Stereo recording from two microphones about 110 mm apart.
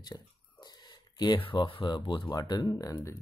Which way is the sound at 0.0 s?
40° left (ahead or behind).